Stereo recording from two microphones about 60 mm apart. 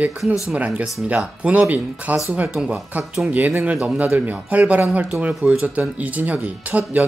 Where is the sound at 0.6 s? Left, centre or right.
Right.